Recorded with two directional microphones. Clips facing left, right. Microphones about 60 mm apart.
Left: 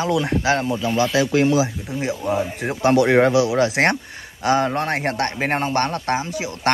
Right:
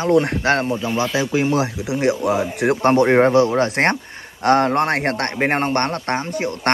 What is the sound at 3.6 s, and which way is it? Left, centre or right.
Speech, right.